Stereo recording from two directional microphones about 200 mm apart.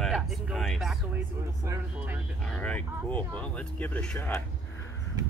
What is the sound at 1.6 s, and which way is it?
Speech, 15° right (ahead or behind).